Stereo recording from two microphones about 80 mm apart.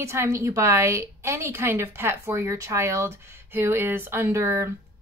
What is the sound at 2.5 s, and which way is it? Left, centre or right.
Speech, right.